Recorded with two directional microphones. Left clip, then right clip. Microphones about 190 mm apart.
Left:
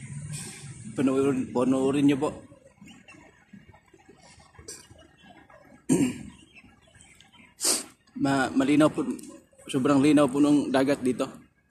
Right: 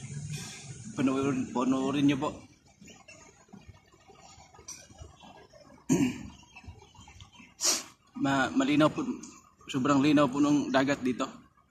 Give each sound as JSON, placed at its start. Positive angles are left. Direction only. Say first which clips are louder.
{"t": 0.3, "sound": "speech", "louder": "left 1 dB", "side_deg": -20}
{"t": 5.9, "sound": "a sound", "louder": "left 3 dB", "side_deg": -20}
{"t": 7.6, "sound": "dog", "louder": "left 1 dB", "side_deg": -25}
{"t": 9.7, "sound": "a man's voice", "louder": "left 4 dB", "side_deg": -20}